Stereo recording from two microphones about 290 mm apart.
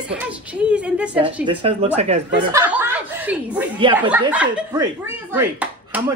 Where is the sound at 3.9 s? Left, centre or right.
Centre.